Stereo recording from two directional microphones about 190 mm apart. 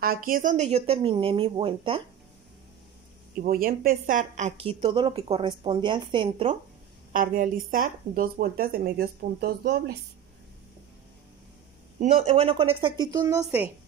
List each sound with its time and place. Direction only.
0.0 s a woman's voice: 50° right (ahead or behind); by 2.0 s 30° right (ahead or behind)
3.3 s a woman's voice: 50° right (ahead or behind); by 6.5 s 25° right (ahead or behind)
7.1 s speech: 45° right (ahead or behind)
12.0 s speech: 35° right (ahead or behind); by 13.7 s 15° right (ahead or behind)